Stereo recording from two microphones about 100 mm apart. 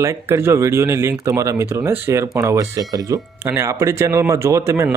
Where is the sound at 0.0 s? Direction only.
30° right (ahead or behind).